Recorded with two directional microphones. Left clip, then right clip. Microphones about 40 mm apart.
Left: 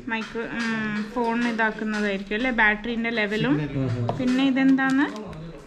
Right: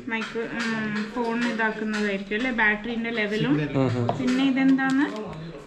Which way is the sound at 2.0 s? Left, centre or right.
Left.